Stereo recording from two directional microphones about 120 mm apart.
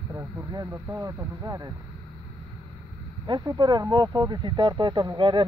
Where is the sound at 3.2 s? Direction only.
40° right (ahead or behind).